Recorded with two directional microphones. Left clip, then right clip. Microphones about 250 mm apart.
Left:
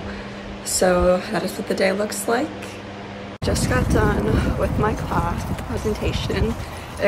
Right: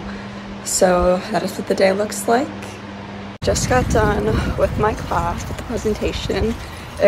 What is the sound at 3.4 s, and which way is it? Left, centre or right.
Speech, centre.